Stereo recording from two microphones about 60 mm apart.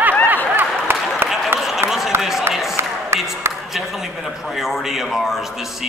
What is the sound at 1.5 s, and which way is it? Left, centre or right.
Run, centre.